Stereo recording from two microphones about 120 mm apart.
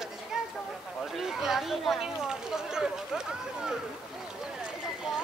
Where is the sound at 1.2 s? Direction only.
5° right (ahead or behind).